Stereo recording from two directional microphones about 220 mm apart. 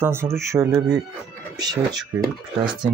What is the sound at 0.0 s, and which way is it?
Speech, 10° right (ahead or behind).